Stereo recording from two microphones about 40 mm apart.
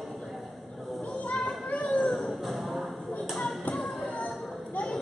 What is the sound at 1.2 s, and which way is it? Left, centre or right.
Children playing, left.